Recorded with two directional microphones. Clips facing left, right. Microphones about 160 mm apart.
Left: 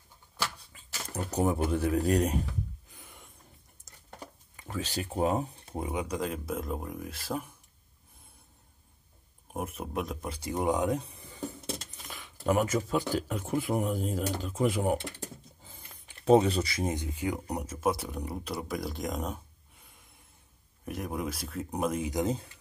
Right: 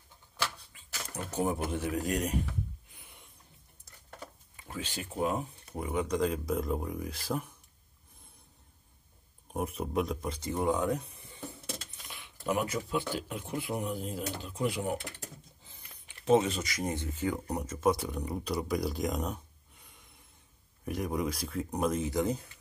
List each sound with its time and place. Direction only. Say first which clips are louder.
1.4 s a man's voice: left 4 dB; 40° left (ahead or behind)
2.9 s a sound: left 4 dB; 40° left (ahead or behind)
4.6 s speech: left 5 dB; 40° left (ahead or behind)
5.9 s speech: right 4 dB; 10° left (ahead or behind)
9.5 s speech: right 2 dB; centre (ahead or behind); by 15.0 s 45° left (ahead or behind)
15.6 s a sound: left 5 dB; 45° left (ahead or behind)
16.3 s a man's voice: left 3 dB; 35° left (ahead or behind)
16.9 s speech: even; 15° left (ahead or behind)
20.8 s speech: right 2 dB; centre (ahead or behind); by 22.5 s 20° left (ahead or behind)